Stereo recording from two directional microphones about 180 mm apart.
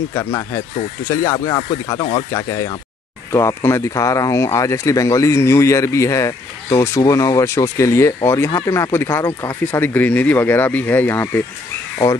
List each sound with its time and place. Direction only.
0.1 s speech: 15° left (ahead or behind)
9.7 s speech: 10° left (ahead or behind)